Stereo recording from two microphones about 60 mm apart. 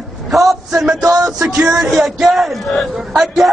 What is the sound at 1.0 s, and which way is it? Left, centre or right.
Music, right.